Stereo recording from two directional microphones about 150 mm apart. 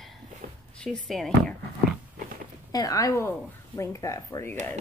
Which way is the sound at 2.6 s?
25° left (ahead or behind).